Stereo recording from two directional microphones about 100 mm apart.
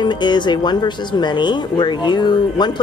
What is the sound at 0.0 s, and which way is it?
Speech, 50° left (ahead or behind).